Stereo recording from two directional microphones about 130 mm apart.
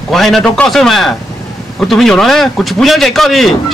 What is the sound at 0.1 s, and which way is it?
A man's voice, centre (ahead or behind).